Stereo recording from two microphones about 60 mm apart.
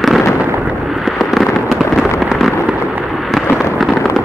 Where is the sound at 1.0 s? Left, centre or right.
Centre.